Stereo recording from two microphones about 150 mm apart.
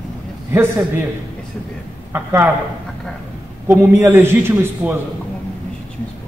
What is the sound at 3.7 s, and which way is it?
A man's voice, 15° right (ahead or behind).